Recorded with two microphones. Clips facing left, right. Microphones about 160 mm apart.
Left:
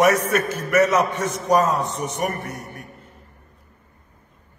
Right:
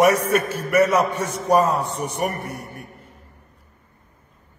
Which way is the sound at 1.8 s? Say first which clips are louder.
Even; 60° right (ahead or behind).